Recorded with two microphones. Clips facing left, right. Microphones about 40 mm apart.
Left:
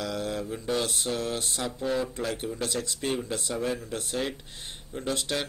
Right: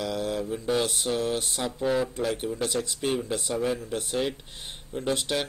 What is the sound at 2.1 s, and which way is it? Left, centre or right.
Speech, centre.